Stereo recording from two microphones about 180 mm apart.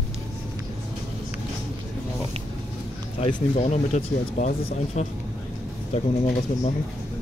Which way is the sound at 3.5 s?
40° left (ahead or behind).